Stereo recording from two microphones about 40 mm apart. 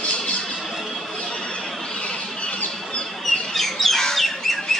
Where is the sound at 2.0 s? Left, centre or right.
Left.